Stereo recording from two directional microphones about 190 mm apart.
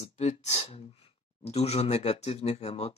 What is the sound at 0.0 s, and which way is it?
Speech, 35° left (ahead or behind).